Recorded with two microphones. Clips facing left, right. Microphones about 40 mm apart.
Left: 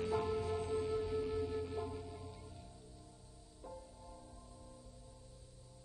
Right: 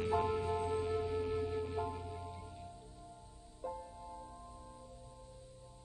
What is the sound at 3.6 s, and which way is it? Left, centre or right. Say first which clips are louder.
Music: right 8 dB; right.